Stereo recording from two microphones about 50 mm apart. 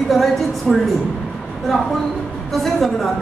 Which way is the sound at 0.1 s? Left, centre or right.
Centre.